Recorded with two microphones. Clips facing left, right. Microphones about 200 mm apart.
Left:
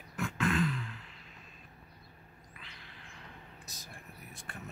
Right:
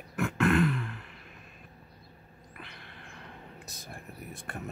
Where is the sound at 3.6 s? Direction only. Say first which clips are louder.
Right 6 dB; 60° right (ahead or behind).